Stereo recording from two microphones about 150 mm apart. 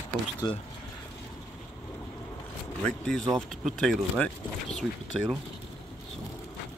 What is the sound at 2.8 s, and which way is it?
Speech, 5° left (ahead or behind).